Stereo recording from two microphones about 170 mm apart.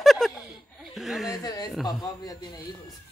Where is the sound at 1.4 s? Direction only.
20° left (ahead or behind).